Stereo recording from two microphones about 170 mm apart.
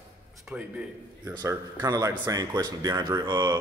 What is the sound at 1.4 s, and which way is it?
Speech, 20° right (ahead or behind).